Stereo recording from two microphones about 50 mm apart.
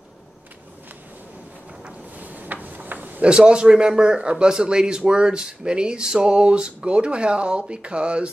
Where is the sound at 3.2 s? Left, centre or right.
Centre.